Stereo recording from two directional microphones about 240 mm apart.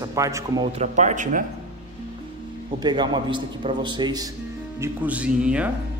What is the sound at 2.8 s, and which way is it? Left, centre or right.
A man's voice, centre.